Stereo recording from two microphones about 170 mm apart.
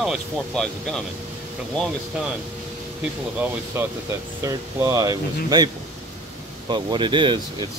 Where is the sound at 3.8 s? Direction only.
10° right (ahead or behind).